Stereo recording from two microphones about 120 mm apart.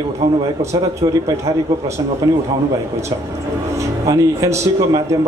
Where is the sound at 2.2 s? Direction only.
30° right (ahead or behind).